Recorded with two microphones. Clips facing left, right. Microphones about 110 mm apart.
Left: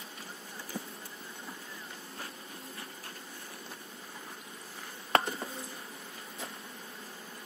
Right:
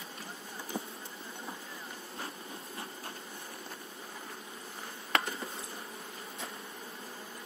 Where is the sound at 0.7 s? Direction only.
15° right (ahead or behind).